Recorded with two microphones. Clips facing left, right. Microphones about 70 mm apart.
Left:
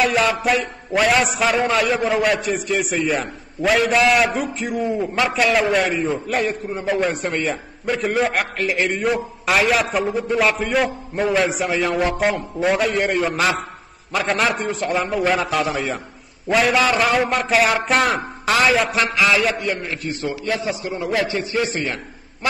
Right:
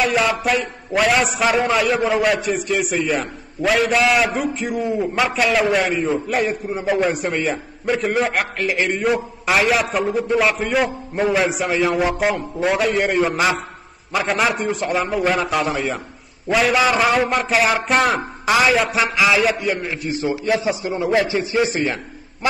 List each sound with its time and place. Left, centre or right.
0.0 s a man's voice: centre
19.8 s a man's voice: centre